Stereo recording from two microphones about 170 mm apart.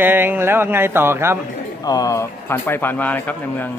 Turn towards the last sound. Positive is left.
turn(degrees=10)  # may be behind; listen again after turning